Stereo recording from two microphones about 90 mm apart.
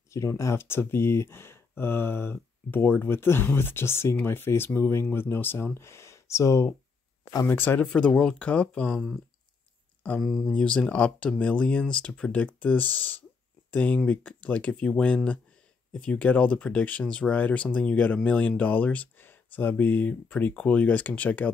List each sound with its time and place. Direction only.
0.1 s speech: 35° left (ahead or behind)
7.4 s speech: 25° left (ahead or behind)
7.8 s speech: 10° left (ahead or behind)
10.2 s speech: 5° right (ahead or behind)
10.5 s speech: 10° left (ahead or behind)